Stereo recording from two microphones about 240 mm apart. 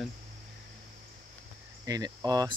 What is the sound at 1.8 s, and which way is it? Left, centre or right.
Cricket, centre.